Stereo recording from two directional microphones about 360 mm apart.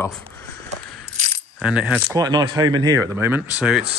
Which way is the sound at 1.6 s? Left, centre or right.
Centre.